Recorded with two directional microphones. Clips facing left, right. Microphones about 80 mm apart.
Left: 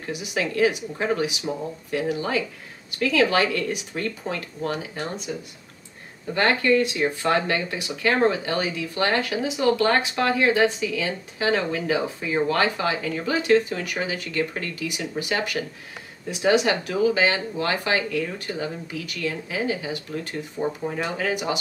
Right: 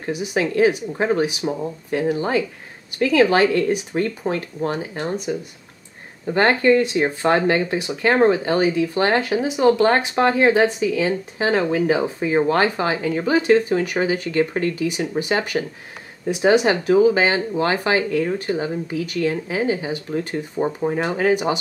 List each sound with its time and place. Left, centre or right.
0.0 s speech: right
6.3 s speech: right